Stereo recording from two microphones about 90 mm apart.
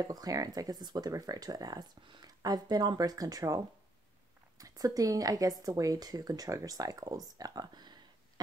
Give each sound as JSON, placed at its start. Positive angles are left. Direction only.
{"t": 0.0, "sound": "speech", "side_deg": -45}